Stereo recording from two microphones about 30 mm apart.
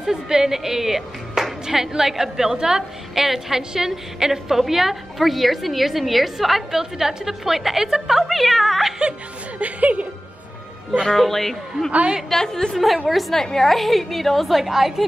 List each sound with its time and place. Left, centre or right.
0.0 s a woman's voice: centre
3.2 s a woman's voice: centre
6.7 s a woman's voice: centre
9.6 s speech: right
11.1 s a man's voice: centre
12.3 s a woman's voice: centre
12.7 s a woman's voice: centre
13.3 s a man's voice: centre
13.7 s a woman's voice: centre